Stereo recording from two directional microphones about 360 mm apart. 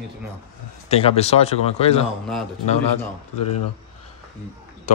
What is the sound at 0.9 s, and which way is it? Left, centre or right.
Speech, centre.